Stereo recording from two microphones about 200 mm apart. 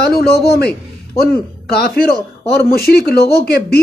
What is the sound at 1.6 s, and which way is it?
A man's voice, 50° left (ahead or behind).